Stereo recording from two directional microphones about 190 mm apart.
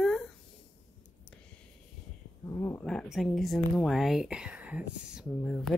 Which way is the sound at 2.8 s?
5° left (ahead or behind).